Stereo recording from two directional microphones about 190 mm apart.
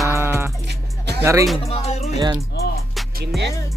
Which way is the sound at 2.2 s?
20° right (ahead or behind).